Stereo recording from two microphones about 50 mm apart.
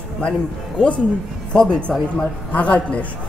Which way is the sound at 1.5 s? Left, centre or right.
Centre.